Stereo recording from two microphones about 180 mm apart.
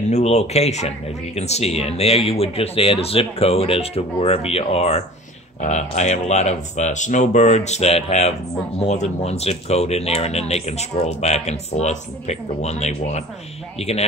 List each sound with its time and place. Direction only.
0.1 s speech: 35° left (ahead or behind)